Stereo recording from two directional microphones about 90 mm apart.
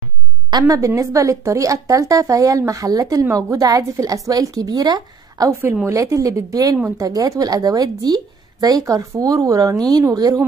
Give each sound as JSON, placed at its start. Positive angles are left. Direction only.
{"t": 0.5, "sound": "a woman's voice", "side_deg": -45}
{"t": 5.5, "sound": "a woman's voice", "side_deg": -30}